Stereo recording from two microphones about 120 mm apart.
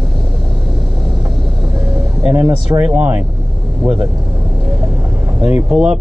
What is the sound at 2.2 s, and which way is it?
Speech, 15° right (ahead or behind).